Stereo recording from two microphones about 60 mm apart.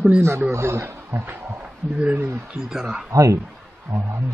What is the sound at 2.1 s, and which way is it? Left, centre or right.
Speech, right.